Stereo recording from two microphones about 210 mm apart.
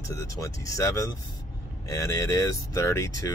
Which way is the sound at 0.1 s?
15° left (ahead or behind).